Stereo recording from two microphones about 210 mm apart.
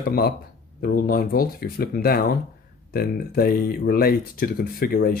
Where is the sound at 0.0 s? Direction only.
45° left (ahead or behind).